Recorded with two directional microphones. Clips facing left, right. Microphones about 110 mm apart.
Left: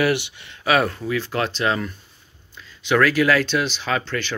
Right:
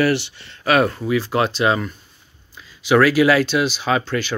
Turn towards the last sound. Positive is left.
turn(degrees=-10)  # may be behind; listen again after turning